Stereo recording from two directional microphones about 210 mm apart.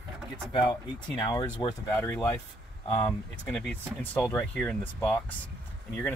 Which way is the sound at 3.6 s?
5° left (ahead or behind).